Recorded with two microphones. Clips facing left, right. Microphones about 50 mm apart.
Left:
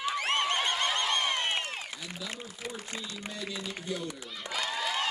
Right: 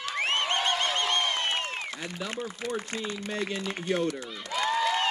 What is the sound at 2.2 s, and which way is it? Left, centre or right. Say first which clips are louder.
Speech: right 7 dB; right.